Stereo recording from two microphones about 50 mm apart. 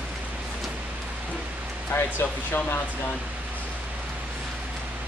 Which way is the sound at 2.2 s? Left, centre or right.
Left.